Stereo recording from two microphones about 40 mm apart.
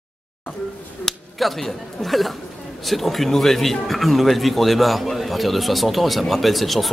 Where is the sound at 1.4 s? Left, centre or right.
Centre.